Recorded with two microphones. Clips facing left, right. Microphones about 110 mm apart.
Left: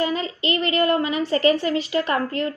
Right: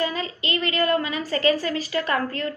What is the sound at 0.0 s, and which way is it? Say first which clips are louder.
A woman's voice: left 3 dB; 25° left (ahead or behind).